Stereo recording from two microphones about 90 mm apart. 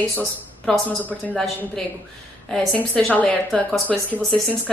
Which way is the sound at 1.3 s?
5° left (ahead or behind).